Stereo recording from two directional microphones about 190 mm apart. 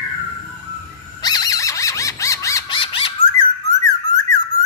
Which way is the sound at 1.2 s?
20° left (ahead or behind).